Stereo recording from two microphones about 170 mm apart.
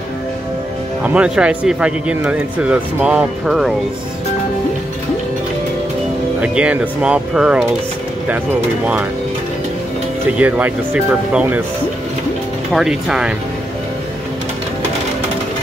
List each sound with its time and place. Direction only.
1.0 s speech: 5° right (ahead or behind)
6.4 s speech: 5° right (ahead or behind)
10.3 s speech: 10° right (ahead or behind)
12.7 s speech: 5° right (ahead or behind)